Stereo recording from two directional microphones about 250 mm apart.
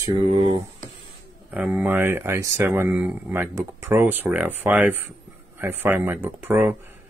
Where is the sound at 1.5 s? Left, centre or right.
Centre.